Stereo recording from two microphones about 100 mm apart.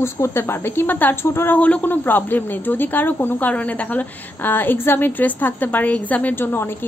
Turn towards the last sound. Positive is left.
turn(degrees=20)  # may be behind; listen again after turning